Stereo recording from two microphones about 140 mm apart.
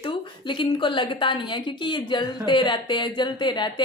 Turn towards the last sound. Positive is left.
turn(degrees=35)  # may be behind; listen again after turning